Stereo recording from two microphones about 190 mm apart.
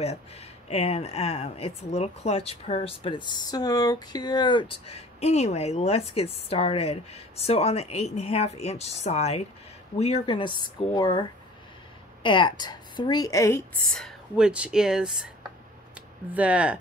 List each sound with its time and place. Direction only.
0.7 s a woman's voice: 35° left (ahead or behind); by 13.7 s 15° left (ahead or behind)
13.9 s speech: centre (ahead or behind)
16.3 s speech: 5° right (ahead or behind)